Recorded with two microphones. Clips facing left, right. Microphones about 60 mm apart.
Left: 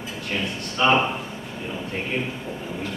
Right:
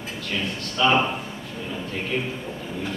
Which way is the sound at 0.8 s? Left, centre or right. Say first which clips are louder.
Left 1 dB; left.